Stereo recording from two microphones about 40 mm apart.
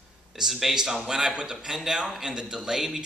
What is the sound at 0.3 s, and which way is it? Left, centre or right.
A man's voice, centre.